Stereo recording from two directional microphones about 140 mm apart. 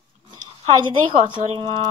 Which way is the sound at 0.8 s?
35° right (ahead or behind).